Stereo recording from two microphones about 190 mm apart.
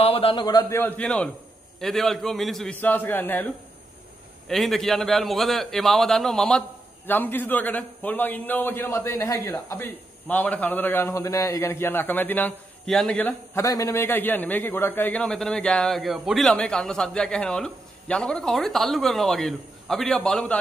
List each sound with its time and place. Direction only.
0.0 s a man's voice: 30° left (ahead or behind); by 20.5 s 5° left (ahead or behind)